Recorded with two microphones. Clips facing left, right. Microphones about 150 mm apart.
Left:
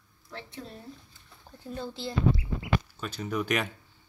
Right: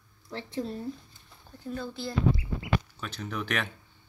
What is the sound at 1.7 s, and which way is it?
Speech, 25° left (ahead or behind).